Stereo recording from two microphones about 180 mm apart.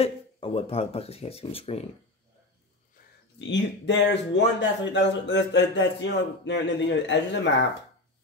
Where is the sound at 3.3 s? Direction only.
80° left.